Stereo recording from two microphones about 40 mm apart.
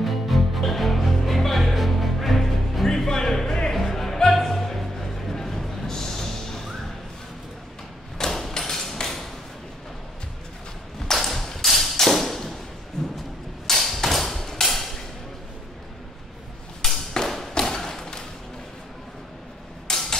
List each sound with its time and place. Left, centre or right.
0.0 s music: centre
8.2 s thump: centre
11.1 s tap: centre
13.0 s music: centre
13.7 s arrow: centre
14.4 s hammer: centre
17.1 s thump: centre
19.9 s a sound: centre